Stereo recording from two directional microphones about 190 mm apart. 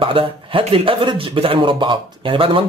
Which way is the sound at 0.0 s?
30° right (ahead or behind).